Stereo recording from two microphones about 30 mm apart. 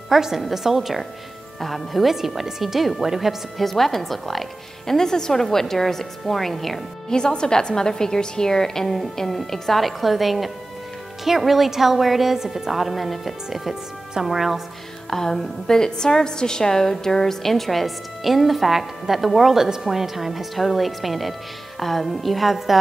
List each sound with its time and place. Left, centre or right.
0.1 s a woman's voice: centre
2.1 s a woman's voice: centre
3.6 s a woman's voice: centre
4.9 s a woman's voice: centre
7.1 s a woman's voice: left
9.8 s a woman's voice: centre
15.0 s a woman's voice: centre